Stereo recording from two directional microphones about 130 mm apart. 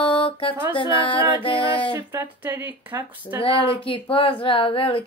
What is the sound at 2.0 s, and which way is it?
Speech, 15° right (ahead or behind).